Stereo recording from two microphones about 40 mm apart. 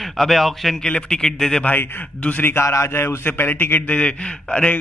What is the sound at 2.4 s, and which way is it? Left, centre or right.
A man's voice, left.